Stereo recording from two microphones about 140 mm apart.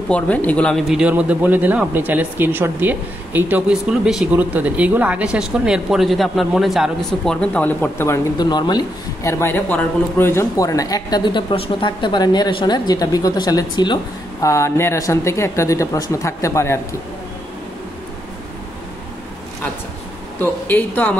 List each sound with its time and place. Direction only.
0.1 s speech: 10° left (ahead or behind)
8.4 s a woman's voice: 30° left (ahead or behind)
9.3 s speech: 15° left (ahead or behind)
11.5 s a woman's voice: 40° left (ahead or behind); by 16.8 s 20° left (ahead or behind)
20.6 s speech: 15° left (ahead or behind)